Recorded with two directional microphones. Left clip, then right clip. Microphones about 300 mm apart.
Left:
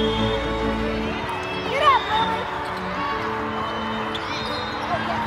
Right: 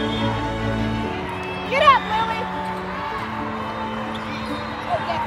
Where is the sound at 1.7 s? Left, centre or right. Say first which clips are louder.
Right 3 dB; right.